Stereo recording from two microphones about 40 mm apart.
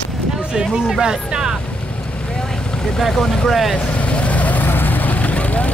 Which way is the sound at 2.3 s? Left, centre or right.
Centre.